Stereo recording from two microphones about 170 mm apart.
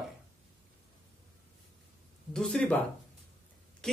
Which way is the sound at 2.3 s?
5° left (ahead or behind).